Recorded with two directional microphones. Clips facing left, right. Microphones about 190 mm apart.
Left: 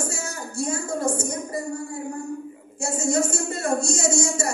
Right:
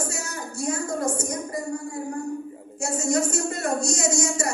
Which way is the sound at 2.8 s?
30° left (ahead or behind).